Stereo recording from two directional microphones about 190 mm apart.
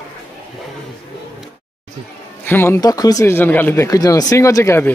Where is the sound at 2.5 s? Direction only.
10° left (ahead or behind).